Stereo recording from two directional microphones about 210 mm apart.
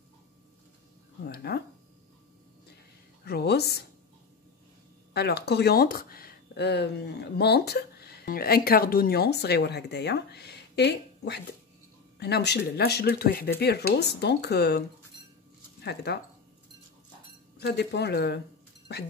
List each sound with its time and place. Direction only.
1.2 s a sound: 45° left (ahead or behind)
3.3 s speech: 50° left (ahead or behind)
5.1 s speech: 50° left (ahead or behind)
15.8 s speech: 50° left (ahead or behind)
17.6 s speech: 50° left (ahead or behind)